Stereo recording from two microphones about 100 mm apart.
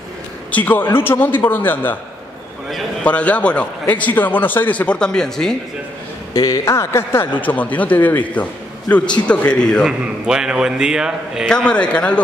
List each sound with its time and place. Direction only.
0.5 s a man's voice: 15° left (ahead or behind)
3.0 s speech: 15° left (ahead or behind)
6.3 s speech: 35° left (ahead or behind); by 9.8 s 10° left (ahead or behind)
9.8 s a man's voice: 5° right (ahead or behind)
11.4 s speech: 10° left (ahead or behind)